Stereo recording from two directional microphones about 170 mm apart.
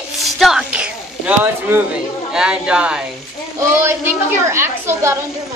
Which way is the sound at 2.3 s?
5° right (ahead or behind).